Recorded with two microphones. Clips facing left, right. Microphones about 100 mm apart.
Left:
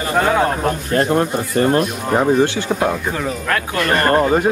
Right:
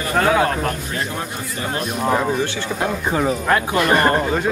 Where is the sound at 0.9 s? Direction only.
55° left (ahead or behind).